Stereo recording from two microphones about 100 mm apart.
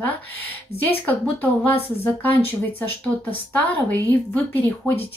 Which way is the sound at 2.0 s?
20° left (ahead or behind).